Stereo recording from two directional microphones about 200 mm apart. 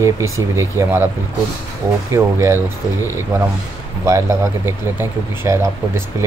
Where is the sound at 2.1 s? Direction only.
15° right (ahead or behind).